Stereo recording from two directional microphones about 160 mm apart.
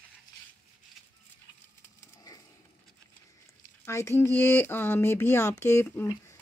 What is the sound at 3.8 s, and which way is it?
Speech, 15° left (ahead or behind).